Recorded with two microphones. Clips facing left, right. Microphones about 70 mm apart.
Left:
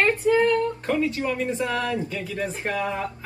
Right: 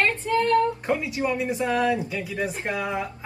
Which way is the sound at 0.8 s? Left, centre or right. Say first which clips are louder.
Left 1 dB; centre.